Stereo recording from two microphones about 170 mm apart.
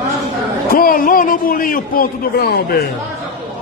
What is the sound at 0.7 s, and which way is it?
A man's voice, 60° left (ahead or behind).